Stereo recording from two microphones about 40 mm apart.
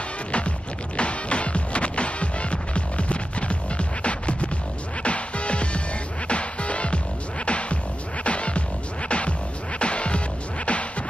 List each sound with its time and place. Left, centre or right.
0.9 s music: left